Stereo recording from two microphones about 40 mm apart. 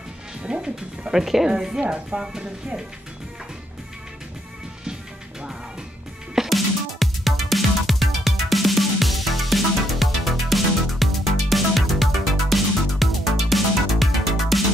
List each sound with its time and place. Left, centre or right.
0.4 s music: right
1.1 s speech: centre
6.3 s music: centre